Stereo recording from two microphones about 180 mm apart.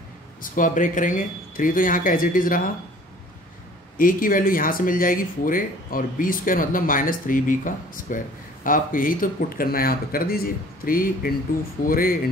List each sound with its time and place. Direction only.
0.4 s speech: 50° left (ahead or behind)
4.0 s speech: 50° left (ahead or behind)